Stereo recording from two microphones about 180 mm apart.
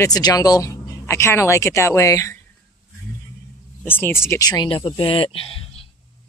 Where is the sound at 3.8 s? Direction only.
10° left (ahead or behind).